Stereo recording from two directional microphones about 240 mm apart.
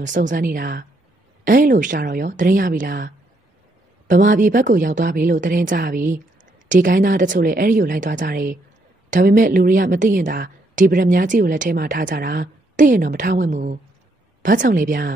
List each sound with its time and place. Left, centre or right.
0.0 s speech: right
4.1 s speech: right